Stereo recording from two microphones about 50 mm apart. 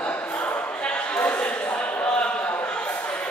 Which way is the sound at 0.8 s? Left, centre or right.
Left.